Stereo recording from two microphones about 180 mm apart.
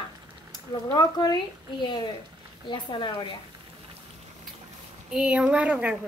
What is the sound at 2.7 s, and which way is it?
Speech, 25° left (ahead or behind).